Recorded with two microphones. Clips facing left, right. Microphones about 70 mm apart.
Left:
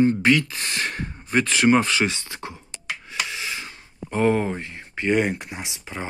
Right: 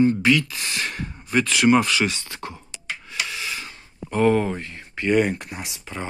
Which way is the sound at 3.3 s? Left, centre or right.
Left.